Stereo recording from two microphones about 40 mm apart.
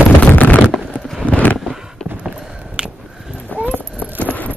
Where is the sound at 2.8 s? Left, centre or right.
Right.